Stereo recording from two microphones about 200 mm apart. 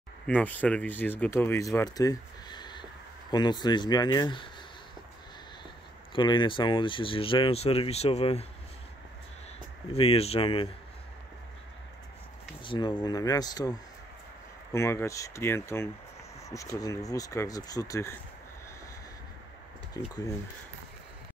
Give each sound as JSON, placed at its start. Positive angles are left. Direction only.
{"t": 0.3, "sound": "speech", "side_deg": 10}
{"t": 6.1, "sound": "speech", "side_deg": 25}
{"t": 9.9, "sound": "speech", "side_deg": 30}
{"t": 12.6, "sound": "speech", "side_deg": 25}
{"t": 20.0, "sound": "speech", "side_deg": 15}